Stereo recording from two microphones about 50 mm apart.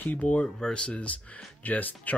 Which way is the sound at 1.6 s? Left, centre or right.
Left.